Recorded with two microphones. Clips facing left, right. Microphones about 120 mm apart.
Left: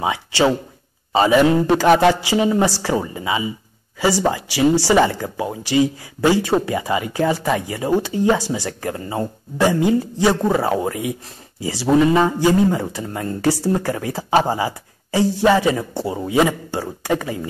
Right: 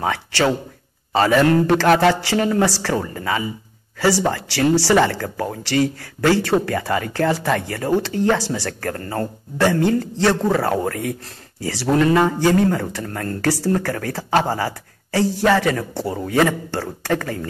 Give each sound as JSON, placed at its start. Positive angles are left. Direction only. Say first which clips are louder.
{"t": 0.0, "sound": "speech", "louder": "left 2 dB", "side_deg": 15}